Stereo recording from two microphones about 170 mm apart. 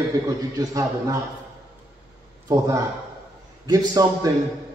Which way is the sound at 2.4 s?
20° right (ahead or behind).